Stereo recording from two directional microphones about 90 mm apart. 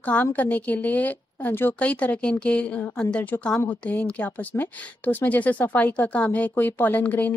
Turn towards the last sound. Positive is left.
turn(degrees=15)  # may be behind; listen again after turning